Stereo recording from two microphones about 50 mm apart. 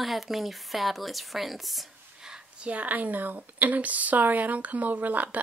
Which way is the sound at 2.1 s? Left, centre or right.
Centre.